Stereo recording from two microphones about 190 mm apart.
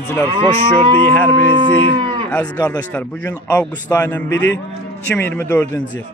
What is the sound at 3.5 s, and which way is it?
Speech, 5° left (ahead or behind).